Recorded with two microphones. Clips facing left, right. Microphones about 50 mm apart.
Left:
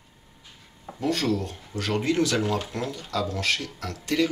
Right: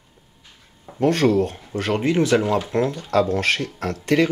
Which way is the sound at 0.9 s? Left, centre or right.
Right.